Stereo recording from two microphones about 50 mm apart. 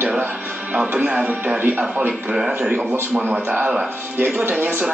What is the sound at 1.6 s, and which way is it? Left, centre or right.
Speech, right.